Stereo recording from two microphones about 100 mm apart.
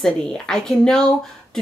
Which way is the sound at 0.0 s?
5° left (ahead or behind).